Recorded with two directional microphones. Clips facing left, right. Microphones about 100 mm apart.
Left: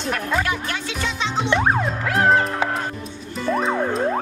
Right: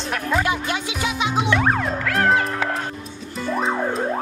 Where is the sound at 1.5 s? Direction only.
20° left (ahead or behind).